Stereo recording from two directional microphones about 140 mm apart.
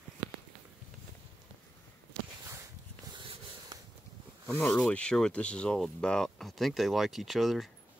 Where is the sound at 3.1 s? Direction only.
35° right (ahead or behind).